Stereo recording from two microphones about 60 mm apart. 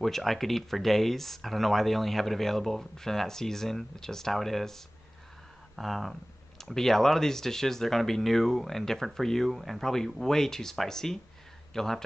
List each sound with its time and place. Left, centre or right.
0.0 s speech: centre